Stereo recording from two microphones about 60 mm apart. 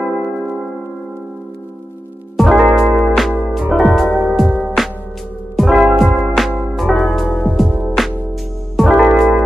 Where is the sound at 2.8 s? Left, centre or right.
Centre.